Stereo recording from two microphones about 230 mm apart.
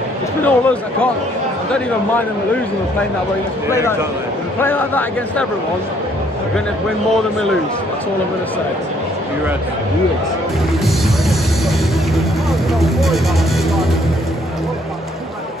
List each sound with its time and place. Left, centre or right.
0.4 s speech: centre
4.6 s a man's voice: centre
12.8 s music: centre